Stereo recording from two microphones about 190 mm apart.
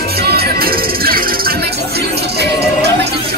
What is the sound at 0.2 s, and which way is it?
Music, 55° right (ahead or behind).